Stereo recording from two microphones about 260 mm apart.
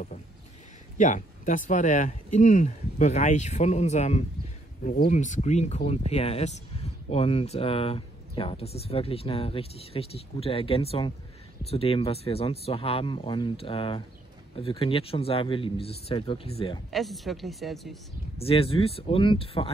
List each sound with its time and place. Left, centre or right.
0.9 s speech: left
16.9 s a woman's voice: centre
18.4 s speech: left